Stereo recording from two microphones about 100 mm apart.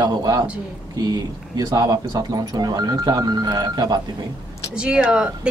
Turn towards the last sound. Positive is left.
turn(degrees=-10)  # may be behind; listen again after turning